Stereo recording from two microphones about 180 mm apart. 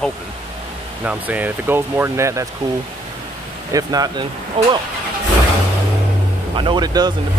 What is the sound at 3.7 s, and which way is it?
Speech, 20° right (ahead or behind).